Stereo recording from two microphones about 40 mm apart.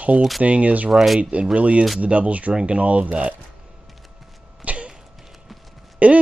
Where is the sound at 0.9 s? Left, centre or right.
Centre.